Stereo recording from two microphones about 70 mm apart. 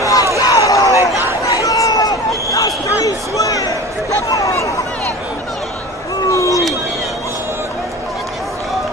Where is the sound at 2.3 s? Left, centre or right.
Left.